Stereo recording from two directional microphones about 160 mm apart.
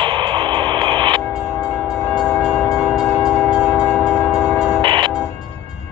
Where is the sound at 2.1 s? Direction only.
5° right (ahead or behind).